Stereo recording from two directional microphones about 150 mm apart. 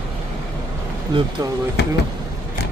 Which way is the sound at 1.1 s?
30° right (ahead or behind).